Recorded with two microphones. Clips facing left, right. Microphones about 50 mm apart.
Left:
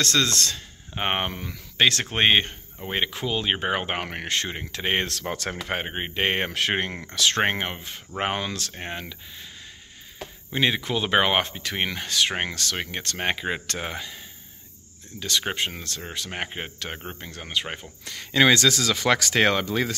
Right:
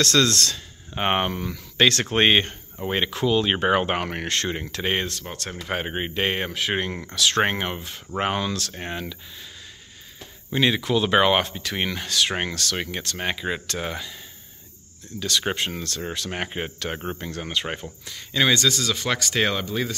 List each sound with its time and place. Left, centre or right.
0.0 s speech: left
0.9 s speech: centre
5.0 s speech: left
5.9 s speech: centre
6.2 s speech: left
8.7 s speech: centre
10.5 s speech: centre
13.0 s speech: left
15.1 s speech: left
16.4 s speech: centre
17.6 s speech: centre
18.0 s speech: left
18.5 s speech: left